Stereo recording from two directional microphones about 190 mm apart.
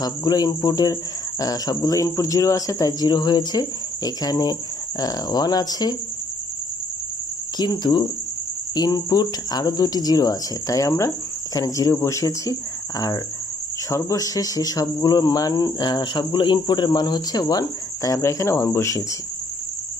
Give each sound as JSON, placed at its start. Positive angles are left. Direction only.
{"t": 0.0, "sound": "speech", "side_deg": 20}
{"t": 7.5, "sound": "speech", "side_deg": 20}